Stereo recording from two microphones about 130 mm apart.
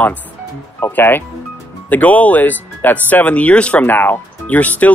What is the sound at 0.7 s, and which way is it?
Speech, 20° left (ahead or behind).